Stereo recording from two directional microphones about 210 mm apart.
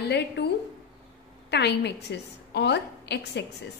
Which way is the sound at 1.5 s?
55° left (ahead or behind).